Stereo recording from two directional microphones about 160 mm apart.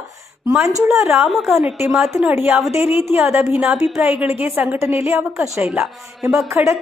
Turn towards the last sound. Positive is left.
turn(degrees=-15)  # may be behind; listen again after turning